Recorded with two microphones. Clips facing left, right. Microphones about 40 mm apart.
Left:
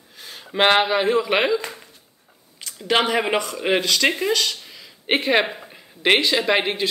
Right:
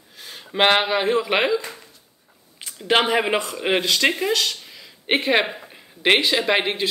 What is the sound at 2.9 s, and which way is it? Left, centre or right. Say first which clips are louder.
Speech: right 1 dB; centre.